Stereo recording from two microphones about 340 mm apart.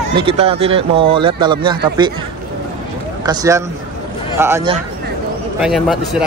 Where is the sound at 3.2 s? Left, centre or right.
Centre.